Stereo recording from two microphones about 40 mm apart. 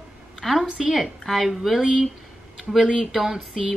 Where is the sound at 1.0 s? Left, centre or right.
Centre.